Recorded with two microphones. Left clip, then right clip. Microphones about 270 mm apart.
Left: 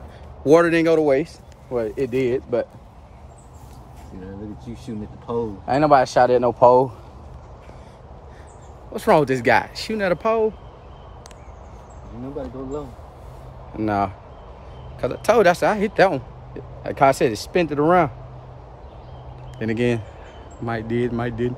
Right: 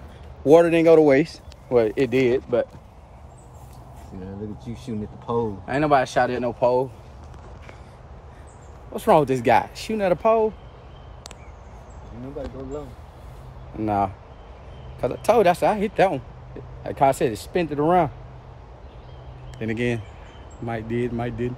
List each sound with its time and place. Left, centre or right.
0.5 s speech: centre
0.8 s speech: right
2.3 s speech: centre
4.6 s speech: right
5.7 s speech: centre
6.6 s speech: left
8.9 s speech: centre
13.7 s speech: centre
19.6 s speech: centre